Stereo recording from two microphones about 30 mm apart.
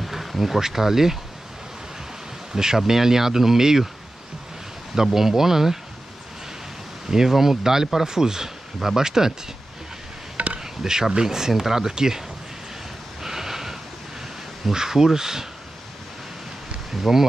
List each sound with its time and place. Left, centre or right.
0.0 s insect: centre
0.6 s speech: centre
2.5 s speech: centre
4.9 s speech: centre
7.1 s speech: centre
10.3 s a sound: right
10.6 s speech: centre
13.2 s a sound: centre
14.7 s speech: centre
16.9 s speech: centre